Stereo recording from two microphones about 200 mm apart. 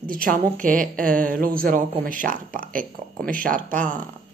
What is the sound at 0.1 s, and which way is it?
A woman's voice, 45° right (ahead or behind).